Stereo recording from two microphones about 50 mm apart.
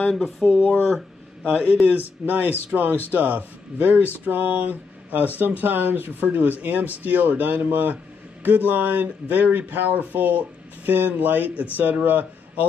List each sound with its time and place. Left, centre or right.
0.1 s speech: centre
1.5 s speech: right